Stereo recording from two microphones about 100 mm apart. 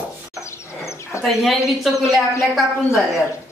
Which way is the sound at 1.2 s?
Centre (ahead or behind).